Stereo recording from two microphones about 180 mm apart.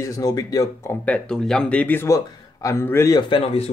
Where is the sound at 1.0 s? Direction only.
5° left (ahead or behind).